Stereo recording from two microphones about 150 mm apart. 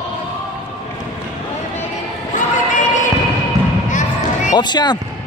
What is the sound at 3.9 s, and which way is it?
Basketball bounce, 55° left (ahead or behind).